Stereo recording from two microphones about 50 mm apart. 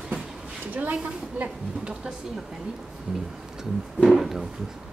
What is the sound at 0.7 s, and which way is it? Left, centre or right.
Speech, right.